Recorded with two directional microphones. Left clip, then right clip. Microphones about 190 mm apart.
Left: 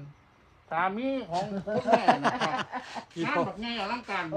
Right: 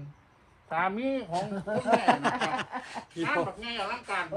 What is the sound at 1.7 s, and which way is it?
Speech, 5° right (ahead or behind).